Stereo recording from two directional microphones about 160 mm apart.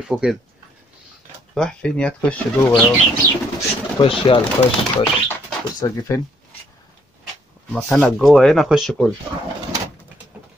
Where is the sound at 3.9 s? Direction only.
35° left (ahead or behind).